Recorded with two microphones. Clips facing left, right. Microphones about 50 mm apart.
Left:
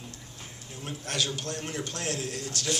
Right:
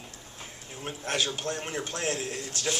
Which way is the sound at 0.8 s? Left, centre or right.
Right.